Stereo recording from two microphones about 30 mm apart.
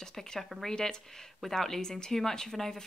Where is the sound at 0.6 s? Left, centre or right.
Left.